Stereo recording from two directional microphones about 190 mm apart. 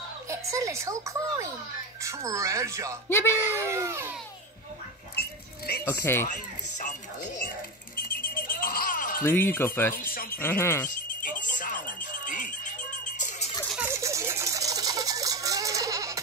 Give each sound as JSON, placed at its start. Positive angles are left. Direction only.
{"t": 0.3, "sound": "a child's voice", "side_deg": -15}
{"t": 3.1, "sound": "speech", "side_deg": 15}
{"t": 3.4, "sound": "speech", "side_deg": -15}
{"t": 5.1, "sound": "a sound", "side_deg": 55}
{"t": 5.9, "sound": "speech", "side_deg": 10}
{"t": 6.2, "sound": "speech", "side_deg": 40}
{"t": 8.2, "sound": "a sound", "side_deg": 50}
{"t": 9.2, "sound": "speech", "side_deg": 10}
{"t": 11.2, "sound": "music", "side_deg": 45}
{"t": 13.8, "sound": "a sound", "side_deg": -15}